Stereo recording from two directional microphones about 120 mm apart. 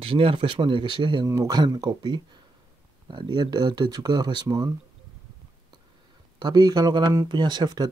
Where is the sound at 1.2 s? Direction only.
25° right (ahead or behind).